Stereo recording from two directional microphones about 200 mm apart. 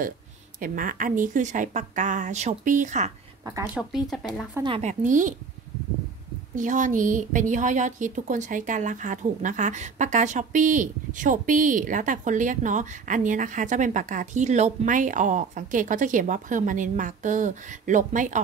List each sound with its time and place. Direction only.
0.6 s a woman's voice: 45° right (ahead or behind)
3.7 s speech: centre (ahead or behind)
4.6 s a woman's voice: 30° right (ahead or behind)
6.5 s a woman's voice: 40° right (ahead or behind)